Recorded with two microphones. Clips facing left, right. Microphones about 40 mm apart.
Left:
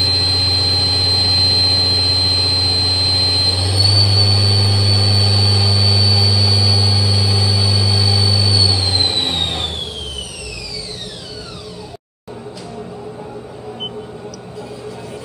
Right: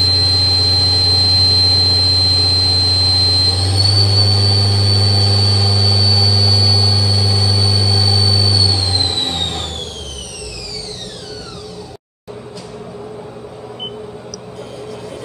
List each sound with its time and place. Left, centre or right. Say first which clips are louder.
0.0 s squeal: right 2 dB; centre
0.8 s vehicle: right 2 dB; centre
1.2 s vehicle: right 2 dB; centre
5.5 s vehicle: even; left